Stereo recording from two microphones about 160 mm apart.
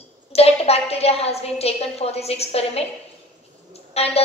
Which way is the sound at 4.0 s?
40° left (ahead or behind).